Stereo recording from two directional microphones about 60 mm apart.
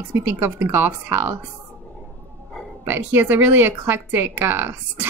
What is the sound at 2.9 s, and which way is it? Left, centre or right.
Speech, right.